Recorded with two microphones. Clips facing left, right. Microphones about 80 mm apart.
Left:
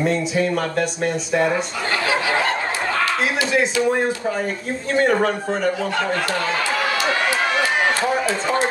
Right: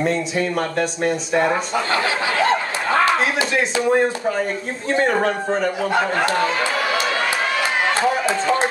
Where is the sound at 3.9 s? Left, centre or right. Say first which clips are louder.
Right 2 dB; centre.